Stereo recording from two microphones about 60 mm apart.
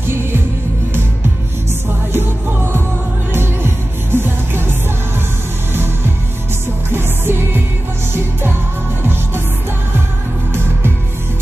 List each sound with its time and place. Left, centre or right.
2.1 s music: right
6.9 s music: right